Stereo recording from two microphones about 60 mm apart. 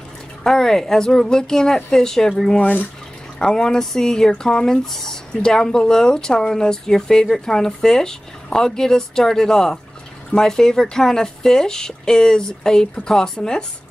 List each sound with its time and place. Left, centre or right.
0.4 s speech: centre
2.6 s speech: left
3.3 s speech: centre